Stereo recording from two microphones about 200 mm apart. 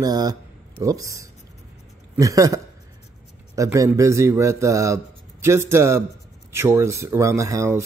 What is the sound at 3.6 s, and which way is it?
Speech, 15° right (ahead or behind).